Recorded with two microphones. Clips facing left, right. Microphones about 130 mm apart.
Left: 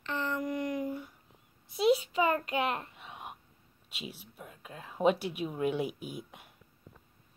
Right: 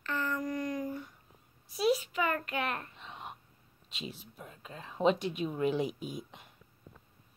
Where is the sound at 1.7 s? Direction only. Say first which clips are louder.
Left 3 dB; 25° left (ahead or behind).